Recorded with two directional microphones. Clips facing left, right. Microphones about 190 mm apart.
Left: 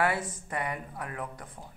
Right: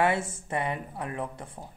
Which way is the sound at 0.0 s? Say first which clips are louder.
Right 3 dB; 25° right (ahead or behind).